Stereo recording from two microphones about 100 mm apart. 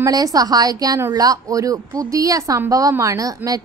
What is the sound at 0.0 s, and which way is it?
A woman's voice, 40° right (ahead or behind).